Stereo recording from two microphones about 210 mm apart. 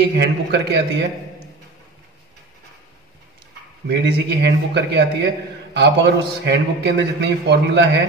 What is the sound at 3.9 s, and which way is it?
A man's voice, 55° right (ahead or behind).